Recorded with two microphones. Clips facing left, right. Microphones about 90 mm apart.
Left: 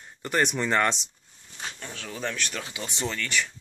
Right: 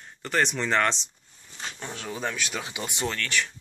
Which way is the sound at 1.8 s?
15° right (ahead or behind).